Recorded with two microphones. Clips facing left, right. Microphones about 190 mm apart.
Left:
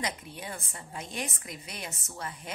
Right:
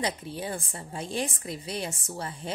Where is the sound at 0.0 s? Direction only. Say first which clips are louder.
Right 5 dB; 30° right (ahead or behind).